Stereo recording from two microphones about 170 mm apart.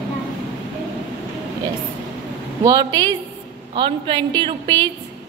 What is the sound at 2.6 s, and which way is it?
A woman's voice, 20° right (ahead or behind).